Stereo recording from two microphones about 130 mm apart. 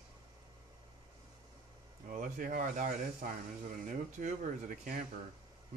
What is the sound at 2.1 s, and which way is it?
Speech, 90° right.